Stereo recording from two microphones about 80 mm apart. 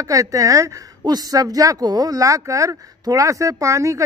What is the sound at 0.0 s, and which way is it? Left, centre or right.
A woman's voice, right.